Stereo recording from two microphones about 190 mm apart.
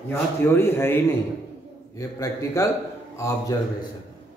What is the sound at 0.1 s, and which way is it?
Speech, 10° left (ahead or behind).